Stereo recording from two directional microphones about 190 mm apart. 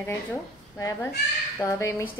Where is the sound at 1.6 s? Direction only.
15° left (ahead or behind).